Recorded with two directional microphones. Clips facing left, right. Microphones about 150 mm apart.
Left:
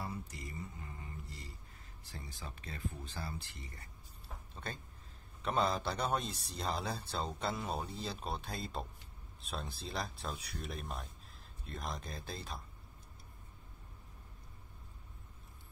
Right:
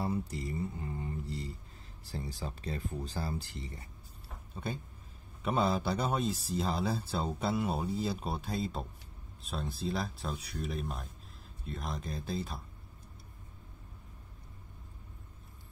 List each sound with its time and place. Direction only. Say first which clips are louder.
0.0 s speech: right 9 dB; 30° right (ahead or behind)
5.4 s speech: right 3 dB; 5° right (ahead or behind)